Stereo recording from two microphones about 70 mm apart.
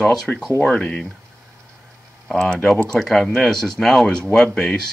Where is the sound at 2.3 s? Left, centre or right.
Centre.